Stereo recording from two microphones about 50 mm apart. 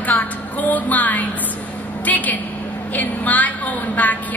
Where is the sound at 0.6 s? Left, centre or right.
Left.